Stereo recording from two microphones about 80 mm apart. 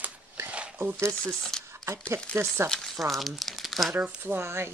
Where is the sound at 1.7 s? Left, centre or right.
Right.